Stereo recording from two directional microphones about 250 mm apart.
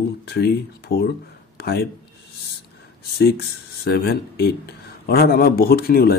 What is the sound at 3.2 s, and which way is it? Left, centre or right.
Speech, left.